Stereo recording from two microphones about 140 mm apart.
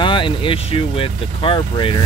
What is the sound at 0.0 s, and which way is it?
Speech, 35° left (ahead or behind).